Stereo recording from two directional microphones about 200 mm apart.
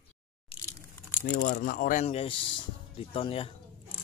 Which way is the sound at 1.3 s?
50° left (ahead or behind).